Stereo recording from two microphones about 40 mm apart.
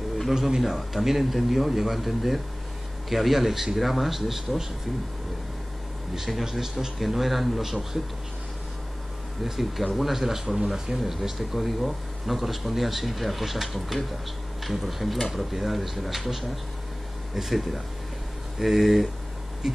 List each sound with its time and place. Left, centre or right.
0.3 s speech: centre
0.6 s speech: centre
6.2 s speech: centre
9.4 s speech: centre
17.4 s speech: centre